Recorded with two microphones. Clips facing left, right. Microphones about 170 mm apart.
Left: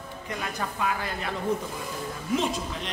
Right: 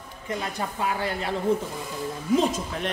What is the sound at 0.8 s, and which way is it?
Speech, 30° right (ahead or behind).